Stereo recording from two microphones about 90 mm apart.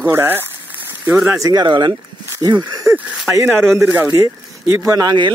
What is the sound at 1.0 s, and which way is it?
Speech, 5° right (ahead or behind).